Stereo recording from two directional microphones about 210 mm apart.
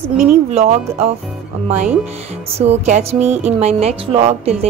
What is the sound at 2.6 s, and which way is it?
Speech, 30° right (ahead or behind).